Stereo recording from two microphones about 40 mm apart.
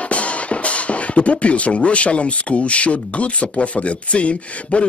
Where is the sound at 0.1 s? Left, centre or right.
Left.